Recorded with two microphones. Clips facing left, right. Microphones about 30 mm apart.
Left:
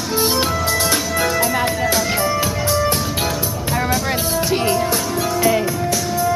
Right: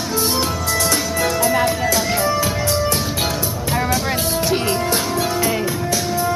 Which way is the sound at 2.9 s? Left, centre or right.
Centre.